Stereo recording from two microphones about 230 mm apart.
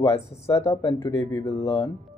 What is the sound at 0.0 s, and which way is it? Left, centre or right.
Speech, centre.